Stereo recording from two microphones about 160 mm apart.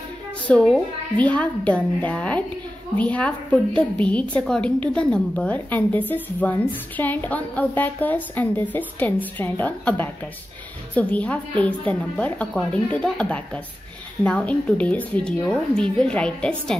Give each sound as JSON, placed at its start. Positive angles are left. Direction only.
{"t": 0.5, "sound": "a woman's voice", "side_deg": 5}